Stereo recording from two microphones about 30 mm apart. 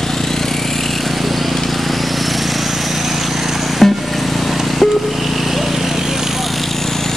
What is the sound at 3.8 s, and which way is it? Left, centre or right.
Vehicle, centre.